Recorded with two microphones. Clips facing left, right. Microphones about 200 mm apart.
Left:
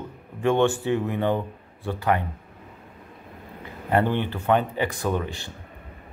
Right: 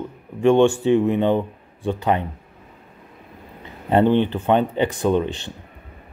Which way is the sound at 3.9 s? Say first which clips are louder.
Right 6 dB; 20° right (ahead or behind).